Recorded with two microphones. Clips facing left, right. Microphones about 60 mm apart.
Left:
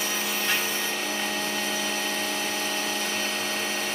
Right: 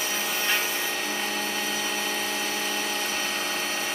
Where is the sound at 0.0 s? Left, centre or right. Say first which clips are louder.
Even; centre.